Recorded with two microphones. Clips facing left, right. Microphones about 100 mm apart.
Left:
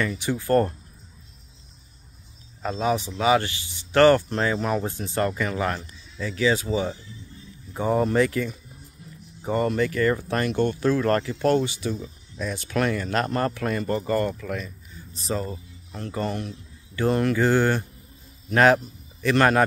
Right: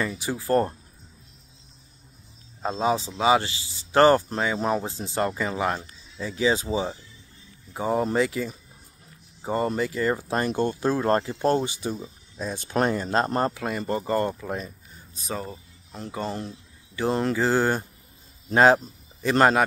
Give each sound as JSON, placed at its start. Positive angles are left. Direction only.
{"t": 0.1, "sound": "speech", "side_deg": -10}
{"t": 2.6, "sound": "speech", "side_deg": -25}
{"t": 13.5, "sound": "speech", "side_deg": -15}
{"t": 15.2, "sound": "speech", "side_deg": -10}